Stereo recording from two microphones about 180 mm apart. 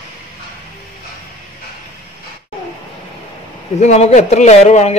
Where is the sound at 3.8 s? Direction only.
40° left (ahead or behind).